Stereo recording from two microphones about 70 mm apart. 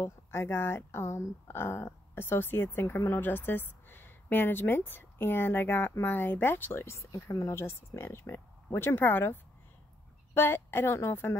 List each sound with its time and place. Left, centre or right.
0.0 s speech: left
7.3 s speech: left